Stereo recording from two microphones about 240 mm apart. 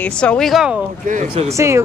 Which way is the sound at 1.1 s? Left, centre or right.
Right.